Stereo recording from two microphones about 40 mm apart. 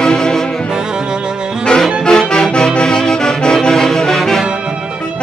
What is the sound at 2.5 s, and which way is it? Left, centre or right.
Music, left.